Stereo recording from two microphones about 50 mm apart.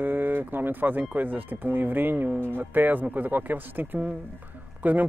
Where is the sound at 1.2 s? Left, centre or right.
Right.